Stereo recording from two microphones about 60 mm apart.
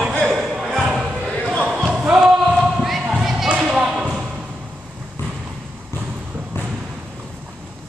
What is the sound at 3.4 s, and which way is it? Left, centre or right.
Basketball bounce, centre.